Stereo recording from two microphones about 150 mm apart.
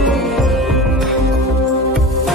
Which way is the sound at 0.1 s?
Centre (ahead or behind).